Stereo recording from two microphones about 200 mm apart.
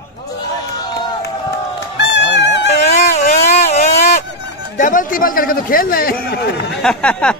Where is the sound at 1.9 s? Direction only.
60° left (ahead or behind).